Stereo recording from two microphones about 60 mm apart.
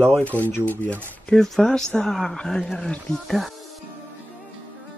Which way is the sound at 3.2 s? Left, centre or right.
Centre.